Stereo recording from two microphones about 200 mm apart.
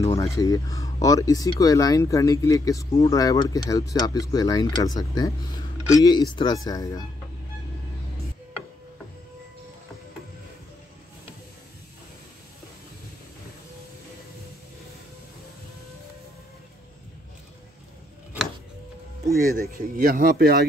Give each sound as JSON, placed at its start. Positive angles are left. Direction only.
{"t": 0.0, "sound": "speech", "side_deg": 15}
{"t": 19.7, "sound": "speech", "side_deg": -45}